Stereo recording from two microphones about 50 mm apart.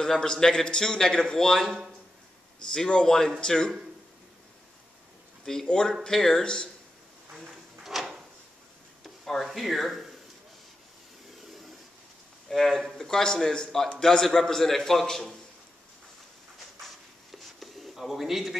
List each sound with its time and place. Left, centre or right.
0.0 s a man's voice: centre
2.7 s a man's voice: centre
5.4 s a man's voice: centre
7.8 s drawer open or close: centre
9.0 s speech: centre
12.4 s a man's voice: centre
16.8 s a sound: centre